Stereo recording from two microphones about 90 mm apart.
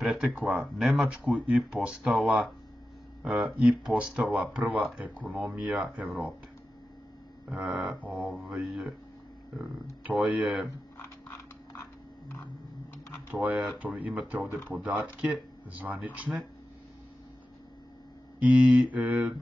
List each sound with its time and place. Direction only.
0.0 s speech: 5° right (ahead or behind)
4.7 s speech: 5° right (ahead or behind)
5.0 s speech: 15° right (ahead or behind)
7.4 s speech: 15° right (ahead or behind)
13.3 s speech: 15° right (ahead or behind)
18.4 s speech: 15° right (ahead or behind)